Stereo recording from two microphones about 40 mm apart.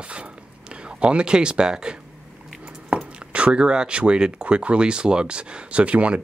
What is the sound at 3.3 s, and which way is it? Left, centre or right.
Speech, right.